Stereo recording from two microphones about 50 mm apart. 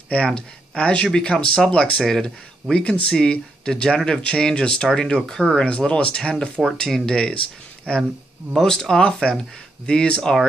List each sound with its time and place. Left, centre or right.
0.1 s speech: left